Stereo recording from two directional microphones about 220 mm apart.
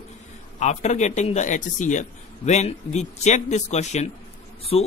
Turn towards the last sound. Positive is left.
turn(degrees=25)  # may be behind; listen again after turning